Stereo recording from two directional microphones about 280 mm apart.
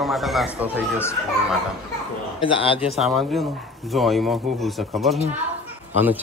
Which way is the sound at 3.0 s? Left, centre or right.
Centre.